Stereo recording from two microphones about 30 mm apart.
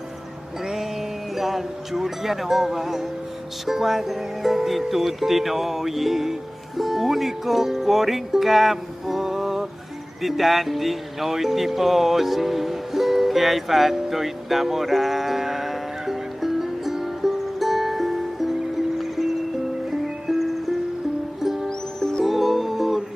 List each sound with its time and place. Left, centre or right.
0.7 s speech: centre
10.2 s music: centre
21.6 s music: left
22.2 s music: centre